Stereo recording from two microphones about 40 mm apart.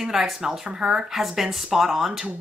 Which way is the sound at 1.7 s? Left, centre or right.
Centre.